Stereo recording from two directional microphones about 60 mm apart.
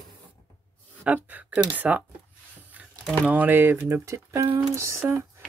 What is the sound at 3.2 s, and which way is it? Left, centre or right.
Speech, right.